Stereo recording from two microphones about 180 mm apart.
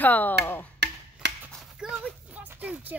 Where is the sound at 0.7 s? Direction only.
70° right (ahead or behind).